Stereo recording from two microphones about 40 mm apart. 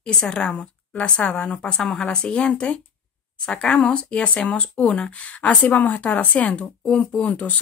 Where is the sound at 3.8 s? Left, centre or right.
Left.